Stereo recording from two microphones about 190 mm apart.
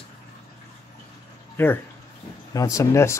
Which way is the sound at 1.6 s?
10° left (ahead or behind).